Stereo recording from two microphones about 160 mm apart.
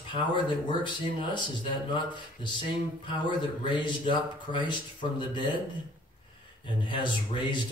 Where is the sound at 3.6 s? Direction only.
30° left (ahead or behind).